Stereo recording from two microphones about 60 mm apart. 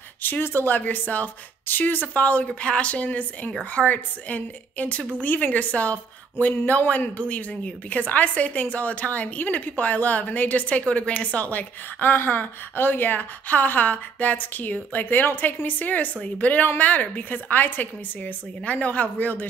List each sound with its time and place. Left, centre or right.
0.2 s a woman's voice: left